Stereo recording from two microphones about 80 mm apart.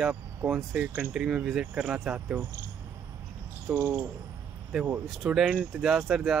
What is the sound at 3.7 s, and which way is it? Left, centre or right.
Speech, centre.